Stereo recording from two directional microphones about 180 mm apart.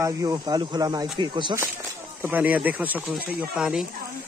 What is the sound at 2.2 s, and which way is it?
Speech, 10° right (ahead or behind).